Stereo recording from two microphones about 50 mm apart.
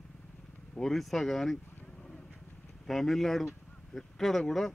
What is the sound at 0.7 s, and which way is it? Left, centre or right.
Speech, centre.